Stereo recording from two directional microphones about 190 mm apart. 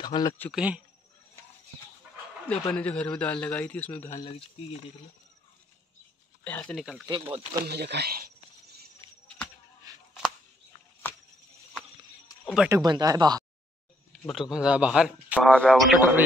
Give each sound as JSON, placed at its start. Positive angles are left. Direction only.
{"t": 0.0, "sound": "speech", "side_deg": 20}
{"t": 0.5, "sound": "a man's voice", "side_deg": -5}
{"t": 2.4, "sound": "a man's voice", "side_deg": 5}
{"t": 4.2, "sound": "speech", "side_deg": 30}
{"t": 6.4, "sound": "a man's voice", "side_deg": 5}
{"t": 7.1, "sound": "speech", "side_deg": -25}
{"t": 7.6, "sound": "speech", "side_deg": -60}
{"t": 12.6, "sound": "speech", "side_deg": -20}
{"t": 14.2, "sound": "a man's voice", "side_deg": 0}